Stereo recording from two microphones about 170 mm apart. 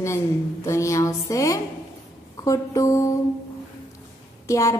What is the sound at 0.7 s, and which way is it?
A woman's voice, 15° left (ahead or behind).